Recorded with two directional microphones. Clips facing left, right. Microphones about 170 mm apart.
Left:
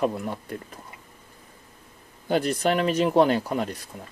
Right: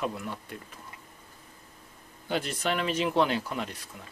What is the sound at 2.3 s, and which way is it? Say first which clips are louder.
Speech: left 7 dB; 45° left (ahead or behind).